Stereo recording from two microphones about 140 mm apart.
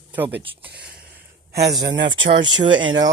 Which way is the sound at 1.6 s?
35° right (ahead or behind).